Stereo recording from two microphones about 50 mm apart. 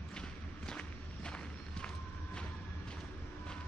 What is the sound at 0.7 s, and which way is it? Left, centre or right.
Walk, centre.